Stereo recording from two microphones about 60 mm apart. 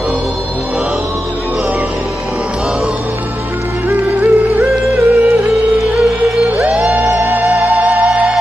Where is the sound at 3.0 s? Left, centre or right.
Right.